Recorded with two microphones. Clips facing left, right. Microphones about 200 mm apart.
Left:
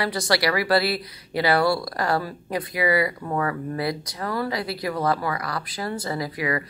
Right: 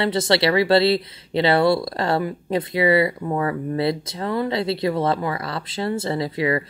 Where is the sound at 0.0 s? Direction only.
25° right (ahead or behind).